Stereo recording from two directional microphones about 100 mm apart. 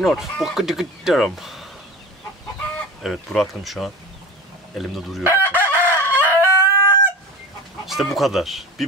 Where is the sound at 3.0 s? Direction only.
Centre (ahead or behind).